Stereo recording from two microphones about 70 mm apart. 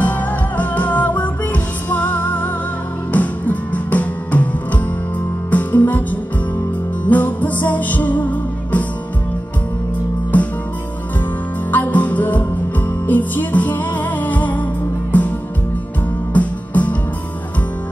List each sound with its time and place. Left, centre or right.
0.0 s music: left
11.7 s music: left
16.3 s music: left